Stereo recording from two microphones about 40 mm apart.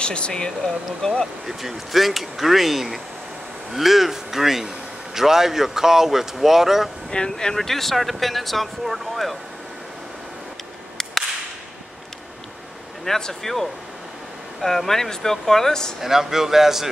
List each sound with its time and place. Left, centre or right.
0.0 s speech: left
1.4 s a man's voice: centre
7.1 s speech: centre
13.0 s speech: centre
16.0 s a man's voice: centre